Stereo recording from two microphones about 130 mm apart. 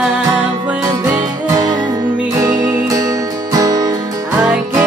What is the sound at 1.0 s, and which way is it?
Music, 25° right (ahead or behind).